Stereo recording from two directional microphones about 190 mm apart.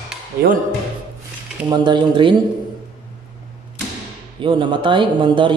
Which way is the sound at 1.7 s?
25° right (ahead or behind).